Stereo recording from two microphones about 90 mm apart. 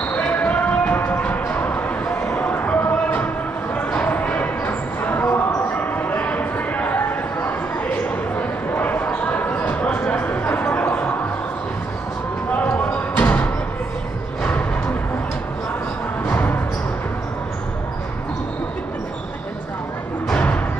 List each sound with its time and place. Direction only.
0.1 s music: 15° left (ahead or behind)
2.3 s a sound: 20° left (ahead or behind)
8.4 s basketball bounce: 20° left (ahead or behind)
12.6 s music: 20° left (ahead or behind)
16.3 s music: 20° left (ahead or behind)
20.2 s music: 15° left (ahead or behind)